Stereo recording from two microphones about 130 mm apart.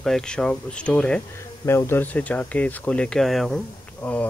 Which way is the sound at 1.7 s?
20° left (ahead or behind).